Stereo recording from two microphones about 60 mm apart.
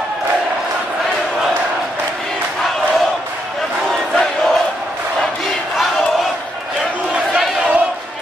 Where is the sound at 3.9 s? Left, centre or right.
Centre.